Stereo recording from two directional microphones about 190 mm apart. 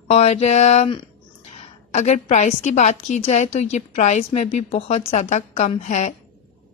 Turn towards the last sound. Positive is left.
turn(degrees=40)  # may be behind; listen again after turning